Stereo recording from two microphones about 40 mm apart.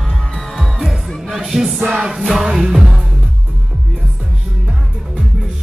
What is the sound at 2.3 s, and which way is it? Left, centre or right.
Speech, centre.